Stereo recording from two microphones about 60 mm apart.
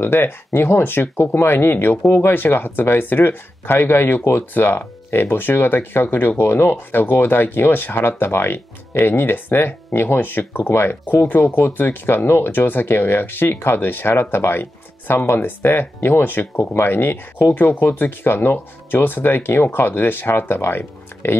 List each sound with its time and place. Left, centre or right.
0.0 s speech: left